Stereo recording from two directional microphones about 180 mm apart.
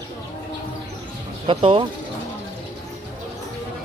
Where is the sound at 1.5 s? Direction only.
30° right (ahead or behind).